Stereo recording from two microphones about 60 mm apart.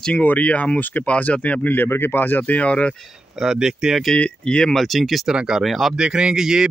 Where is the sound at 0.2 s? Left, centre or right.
Left.